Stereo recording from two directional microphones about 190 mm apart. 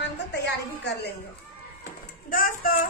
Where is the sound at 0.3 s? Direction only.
65° left (ahead or behind).